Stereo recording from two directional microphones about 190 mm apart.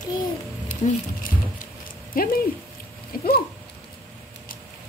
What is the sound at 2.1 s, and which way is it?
Speech, 50° left (ahead or behind).